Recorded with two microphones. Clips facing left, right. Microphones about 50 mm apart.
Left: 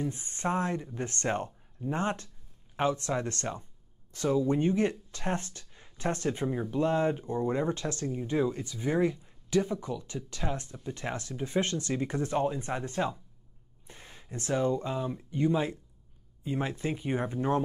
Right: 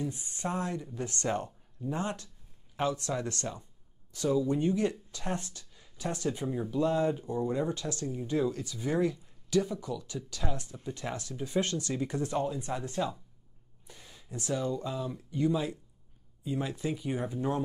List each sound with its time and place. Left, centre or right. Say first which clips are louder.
0.0 s speech: left 3 dB; left